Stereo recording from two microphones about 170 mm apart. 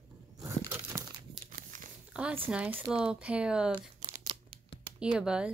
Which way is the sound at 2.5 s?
10° right (ahead or behind).